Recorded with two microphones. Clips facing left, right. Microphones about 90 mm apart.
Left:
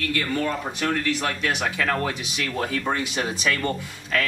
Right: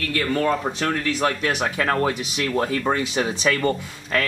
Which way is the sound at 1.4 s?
35° right (ahead or behind).